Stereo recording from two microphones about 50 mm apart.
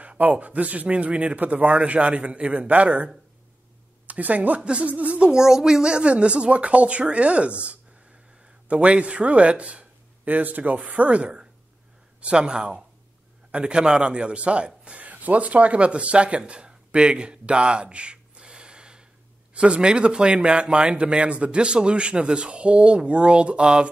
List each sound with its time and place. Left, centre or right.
0.0 s speech: right
4.1 s speech: right
5.3 s a man's voice: centre